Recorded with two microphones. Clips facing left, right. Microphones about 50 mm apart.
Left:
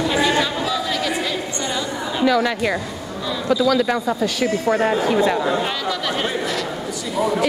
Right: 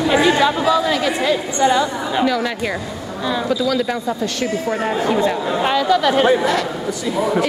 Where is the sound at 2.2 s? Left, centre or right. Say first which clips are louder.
Left 2 dB; centre.